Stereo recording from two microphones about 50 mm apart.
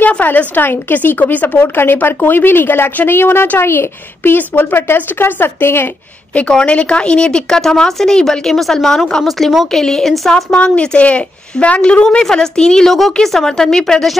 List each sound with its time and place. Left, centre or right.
0.2 s a woman's voice: left
6.5 s speech: left; by 9.7 s centre
9.7 s speech: centre
10.3 s a woman's voice: centre